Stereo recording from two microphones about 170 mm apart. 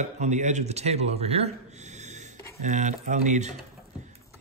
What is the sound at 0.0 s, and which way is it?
Speech, 45° right (ahead or behind).